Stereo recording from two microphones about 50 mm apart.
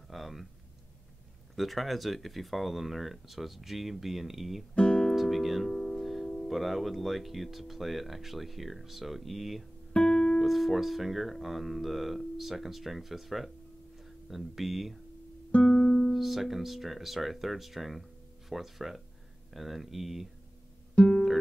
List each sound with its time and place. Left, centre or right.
0.1 s a sound: centre
1.5 s speech: centre
4.7 s music: centre
5.1 s speech: centre
5.7 s music: centre
6.3 s speech: centre
9.9 s music: centre
10.4 s speech: centre
15.5 s music: centre
16.1 s speech: centre
20.9 s music: centre